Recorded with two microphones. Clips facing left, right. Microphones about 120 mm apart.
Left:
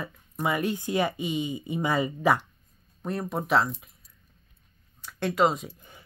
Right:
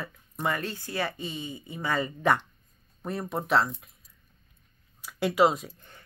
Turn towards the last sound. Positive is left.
turn(degrees=10)  # may be behind; listen again after turning